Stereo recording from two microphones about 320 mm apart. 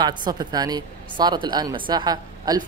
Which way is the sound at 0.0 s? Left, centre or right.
Centre.